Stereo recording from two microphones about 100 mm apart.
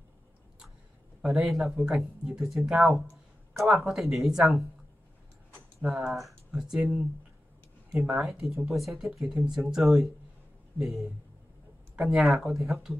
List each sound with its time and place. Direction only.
1.2 s speech: 5° right (ahead or behind)
5.8 s speech: 5° right (ahead or behind)